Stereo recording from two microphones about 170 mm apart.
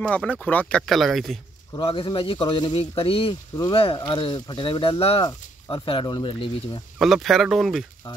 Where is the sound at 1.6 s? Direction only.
30° left (ahead or behind).